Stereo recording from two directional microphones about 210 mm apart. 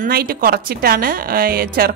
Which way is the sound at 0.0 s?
45° right (ahead or behind).